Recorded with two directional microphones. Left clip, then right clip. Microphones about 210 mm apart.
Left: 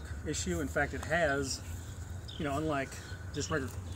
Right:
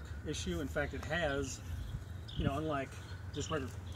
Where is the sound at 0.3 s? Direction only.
15° right (ahead or behind).